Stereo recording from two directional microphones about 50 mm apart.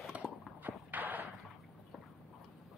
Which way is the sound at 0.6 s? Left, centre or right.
Right.